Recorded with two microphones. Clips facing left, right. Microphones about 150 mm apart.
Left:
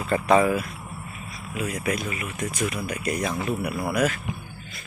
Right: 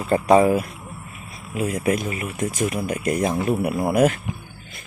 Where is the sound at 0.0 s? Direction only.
20° right (ahead or behind).